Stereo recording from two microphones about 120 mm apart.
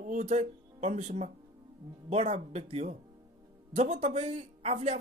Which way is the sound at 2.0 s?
60° right (ahead or behind).